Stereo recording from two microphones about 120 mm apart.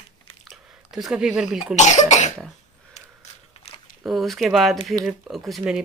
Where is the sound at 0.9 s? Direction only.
5° right (ahead or behind).